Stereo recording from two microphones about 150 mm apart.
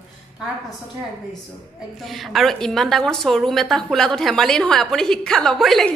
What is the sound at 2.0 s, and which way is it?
A woman's voice, centre (ahead or behind).